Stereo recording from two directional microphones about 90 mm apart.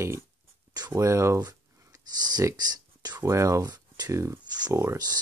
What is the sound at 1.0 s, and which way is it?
Speech, 30° right (ahead or behind).